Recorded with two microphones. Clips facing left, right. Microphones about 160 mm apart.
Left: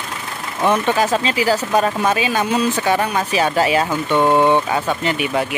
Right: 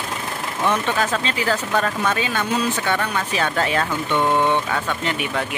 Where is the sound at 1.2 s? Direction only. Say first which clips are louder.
Left 5 dB; 10° left (ahead or behind).